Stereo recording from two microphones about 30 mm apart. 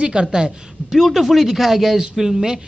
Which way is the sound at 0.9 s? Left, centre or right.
Centre.